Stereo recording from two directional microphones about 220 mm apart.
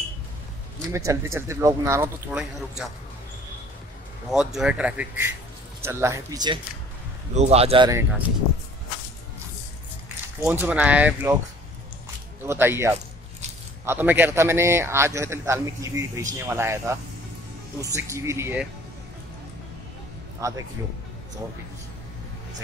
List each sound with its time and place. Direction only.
0.9 s a man's voice: 10° right (ahead or behind)
4.3 s a man's voice: centre (ahead or behind); by 6.6 s 20° right (ahead or behind)
7.3 s speech: 30° right (ahead or behind)
10.4 s a man's voice: 10° right (ahead or behind)
12.4 s a man's voice: 10° right (ahead or behind)
20.3 s speech: 15° right (ahead or behind)